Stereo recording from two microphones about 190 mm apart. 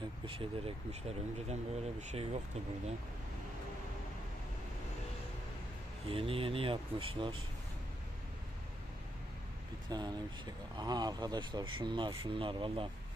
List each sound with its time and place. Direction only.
0.3 s speech: 30° right (ahead or behind)
6.0 s speech: 30° right (ahead or behind)
9.8 s speech: 20° right (ahead or behind)